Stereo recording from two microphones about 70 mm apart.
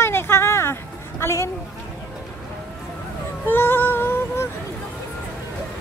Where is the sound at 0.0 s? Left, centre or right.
Left.